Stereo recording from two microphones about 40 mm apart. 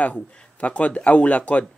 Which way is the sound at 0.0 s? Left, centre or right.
Left.